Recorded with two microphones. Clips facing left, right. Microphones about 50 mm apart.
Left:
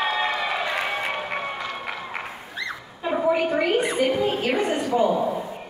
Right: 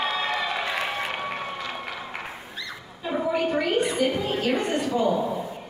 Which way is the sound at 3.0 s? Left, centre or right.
Left.